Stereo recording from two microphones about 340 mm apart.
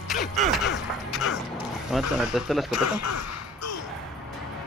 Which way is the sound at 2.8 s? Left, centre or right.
Left.